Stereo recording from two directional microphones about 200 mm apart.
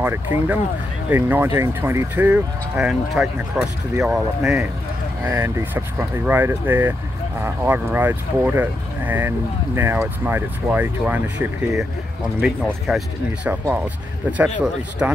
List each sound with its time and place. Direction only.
0.0 s speech: 10° right (ahead or behind)
15.0 s speech: 5° right (ahead or behind)